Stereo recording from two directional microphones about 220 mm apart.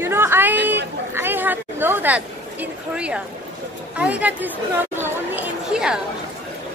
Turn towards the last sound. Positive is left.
turn(degrees=-5)  # may be behind; listen again after turning